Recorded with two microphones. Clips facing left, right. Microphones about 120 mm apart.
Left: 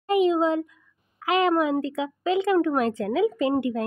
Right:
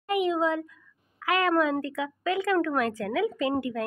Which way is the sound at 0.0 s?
25° left (ahead or behind).